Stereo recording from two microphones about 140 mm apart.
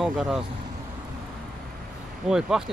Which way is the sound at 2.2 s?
5° right (ahead or behind).